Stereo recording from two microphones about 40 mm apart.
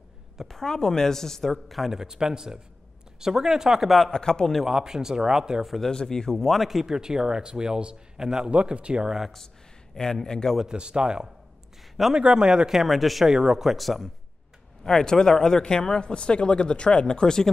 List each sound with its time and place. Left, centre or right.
0.5 s speech: centre
1.9 s speech: centre
4.1 s speech: centre
4.6 s speech: centre
5.9 s speech: centre
8.5 s speech: right
10.2 s speech: centre
10.7 s speech: right
12.7 s speech: centre
13.3 s speech: centre
13.7 s speech: centre